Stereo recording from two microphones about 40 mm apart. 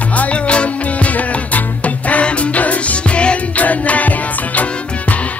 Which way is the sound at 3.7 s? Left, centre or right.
Left.